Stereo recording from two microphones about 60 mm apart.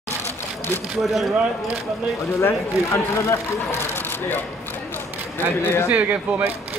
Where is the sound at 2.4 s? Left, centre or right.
Left.